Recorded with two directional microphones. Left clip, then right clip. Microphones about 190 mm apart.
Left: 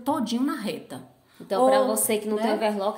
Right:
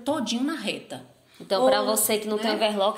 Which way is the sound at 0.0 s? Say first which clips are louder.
Left 1 dB; 60° left (ahead or behind).